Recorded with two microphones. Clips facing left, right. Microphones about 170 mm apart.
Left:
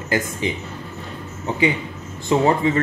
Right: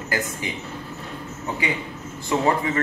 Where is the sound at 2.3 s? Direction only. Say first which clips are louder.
Left 5 dB; 25° left (ahead or behind).